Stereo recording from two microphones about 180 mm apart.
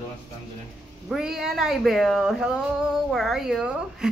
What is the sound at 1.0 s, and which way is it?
A woman's voice, centre (ahead or behind).